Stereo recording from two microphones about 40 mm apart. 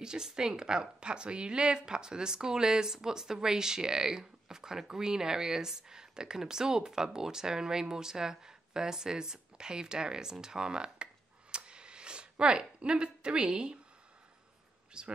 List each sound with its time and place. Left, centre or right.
0.0 s a woman's voice: centre
11.5 s a sound: right
15.0 s speech: right